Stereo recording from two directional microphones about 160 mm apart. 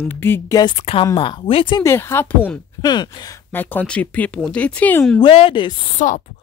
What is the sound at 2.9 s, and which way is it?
Speech, 25° left (ahead or behind).